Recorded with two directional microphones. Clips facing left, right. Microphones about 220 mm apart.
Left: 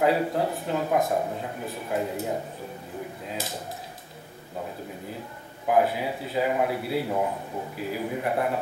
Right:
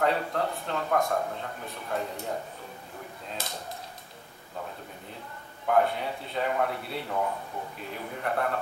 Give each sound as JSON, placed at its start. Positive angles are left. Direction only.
{"t": 0.0, "sound": "speech", "side_deg": 5}
{"t": 5.7, "sound": "speech", "side_deg": 5}